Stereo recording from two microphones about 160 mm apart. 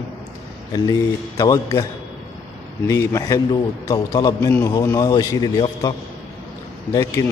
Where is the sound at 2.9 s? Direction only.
20° left (ahead or behind).